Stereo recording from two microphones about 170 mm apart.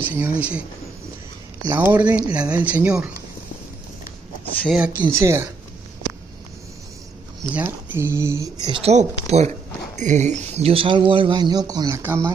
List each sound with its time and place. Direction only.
0.0 s speech: 10° right (ahead or behind)
1.7 s speech: 10° right (ahead or behind)
4.6 s speech: 5° right (ahead or behind)
4.9 s speech: 20° right (ahead or behind)
7.5 s speech: 10° right (ahead or behind)
8.8 s speech: 40° right (ahead or behind); by 12.3 s 15° right (ahead or behind)